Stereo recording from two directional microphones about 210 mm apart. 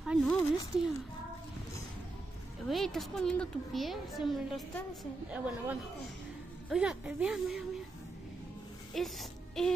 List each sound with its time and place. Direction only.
0.0 s a sound: 5° right (ahead or behind)
0.7 s a woman's voice: 5° right (ahead or behind)
2.7 s a woman's voice: centre (ahead or behind)
8.9 s a woman's voice: centre (ahead or behind)